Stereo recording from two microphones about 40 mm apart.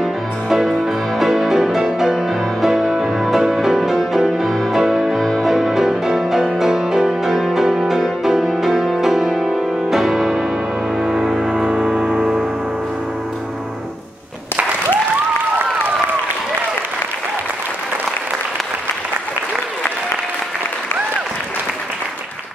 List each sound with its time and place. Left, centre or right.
0.0 s music: centre; by 12.4 s right